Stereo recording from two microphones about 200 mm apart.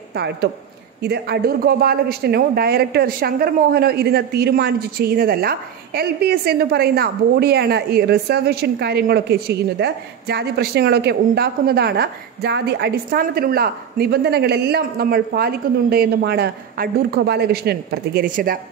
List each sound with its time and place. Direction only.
0.1 s speech: 55° right (ahead or behind)